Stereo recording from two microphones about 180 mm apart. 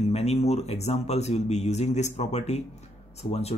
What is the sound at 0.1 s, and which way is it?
Speech, 35° left (ahead or behind).